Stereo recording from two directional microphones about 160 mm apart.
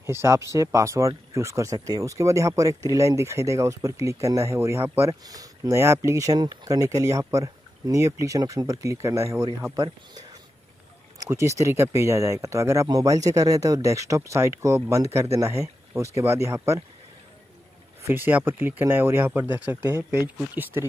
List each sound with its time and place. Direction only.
0.0 s speech: 15° right (ahead or behind)
11.1 s speech: 20° right (ahead or behind)
18.0 s speech: 10° right (ahead or behind)